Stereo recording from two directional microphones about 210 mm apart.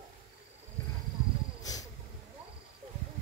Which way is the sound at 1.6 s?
15° left (ahead or behind).